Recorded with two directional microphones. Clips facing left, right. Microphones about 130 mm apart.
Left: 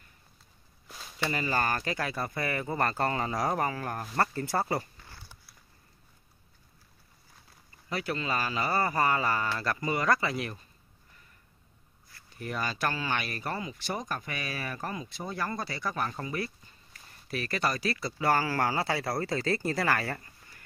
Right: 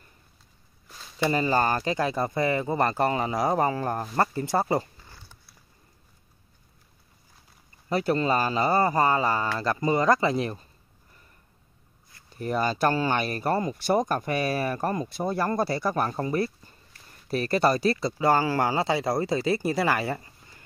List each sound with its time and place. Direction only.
0.8 s a sound: 10° left (ahead or behind)
1.3 s speech: 25° right (ahead or behind)
7.9 s speech: 35° right (ahead or behind)
12.4 s speech: 35° right (ahead or behind)